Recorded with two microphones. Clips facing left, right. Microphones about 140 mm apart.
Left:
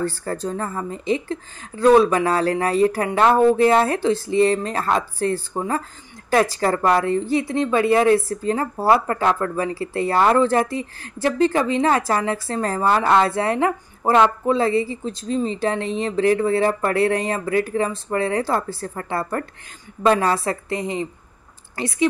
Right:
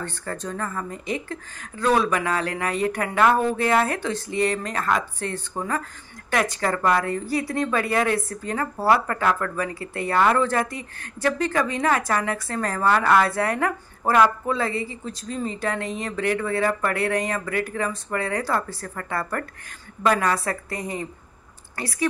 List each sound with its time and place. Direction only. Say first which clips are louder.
0.0 s speech: left 7 dB; 35° left (ahead or behind)